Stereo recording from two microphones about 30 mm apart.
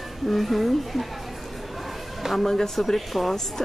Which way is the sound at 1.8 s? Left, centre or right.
Centre.